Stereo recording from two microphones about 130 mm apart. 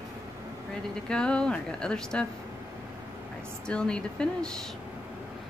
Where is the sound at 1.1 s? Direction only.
5° left (ahead or behind).